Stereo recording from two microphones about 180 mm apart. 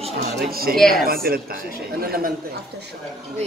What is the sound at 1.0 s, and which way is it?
Speech, 55° right (ahead or behind).